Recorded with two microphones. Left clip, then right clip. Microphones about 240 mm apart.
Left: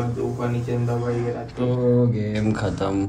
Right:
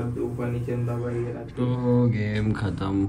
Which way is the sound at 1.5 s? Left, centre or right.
Centre.